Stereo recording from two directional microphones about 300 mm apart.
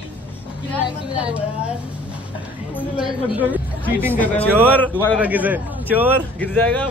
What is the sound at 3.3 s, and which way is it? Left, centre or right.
Speech, centre.